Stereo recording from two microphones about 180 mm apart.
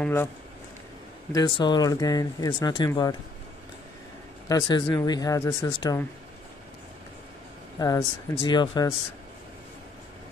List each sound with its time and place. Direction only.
0.0 s speech: 10° left (ahead or behind)
1.3 s speech: 25° left (ahead or behind)
4.5 s speech: 20° left (ahead or behind)
7.8 s speech: 25° left (ahead or behind)